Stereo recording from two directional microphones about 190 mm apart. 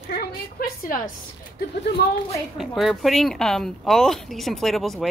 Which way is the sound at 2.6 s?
Centre (ahead or behind).